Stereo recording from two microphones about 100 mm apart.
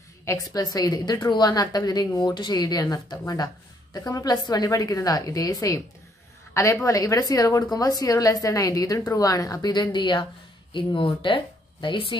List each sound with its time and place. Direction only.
0.2 s a woman's voice: 30° left (ahead or behind)
0.6 s a woman's voice: 40° left (ahead or behind)